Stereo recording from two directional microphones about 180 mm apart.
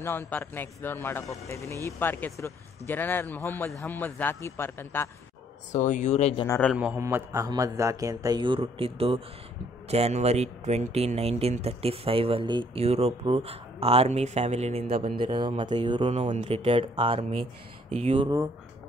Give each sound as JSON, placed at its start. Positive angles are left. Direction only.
{"t": 0.3, "sound": "a man's voice", "side_deg": 10}
{"t": 5.7, "sound": "speech", "side_deg": 45}
{"t": 6.4, "sound": "a man's voice", "side_deg": 15}
{"t": 6.7, "sound": "a man's voice", "side_deg": -5}